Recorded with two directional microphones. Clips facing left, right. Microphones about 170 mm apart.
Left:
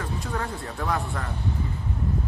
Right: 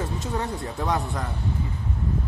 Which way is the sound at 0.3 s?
20° right (ahead or behind).